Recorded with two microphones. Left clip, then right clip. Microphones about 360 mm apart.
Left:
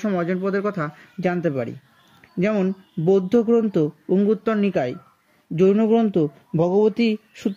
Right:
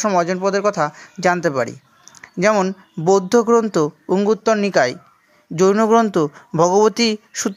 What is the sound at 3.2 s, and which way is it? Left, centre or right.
Speech, right.